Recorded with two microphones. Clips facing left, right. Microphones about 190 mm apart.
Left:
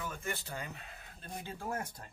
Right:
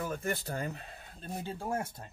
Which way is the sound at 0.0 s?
40° right (ahead or behind).